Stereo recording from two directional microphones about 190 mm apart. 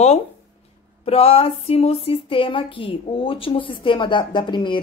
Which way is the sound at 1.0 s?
30° left (ahead or behind).